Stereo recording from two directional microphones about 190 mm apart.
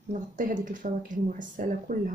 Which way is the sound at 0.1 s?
45° right (ahead or behind).